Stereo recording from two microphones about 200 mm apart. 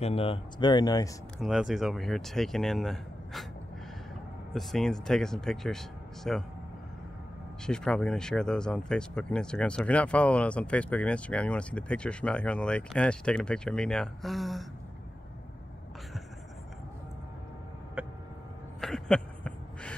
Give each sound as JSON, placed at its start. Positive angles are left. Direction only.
{"t": 0.0, "sound": "speech", "side_deg": 30}
{"t": 1.4, "sound": "speech", "side_deg": 0}
{"t": 4.6, "sound": "speech", "side_deg": 0}
{"t": 7.6, "sound": "speech", "side_deg": 5}
{"t": 18.0, "sound": "a sound", "side_deg": -5}